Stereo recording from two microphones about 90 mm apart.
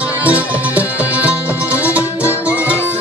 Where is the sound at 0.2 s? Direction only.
15° right (ahead or behind).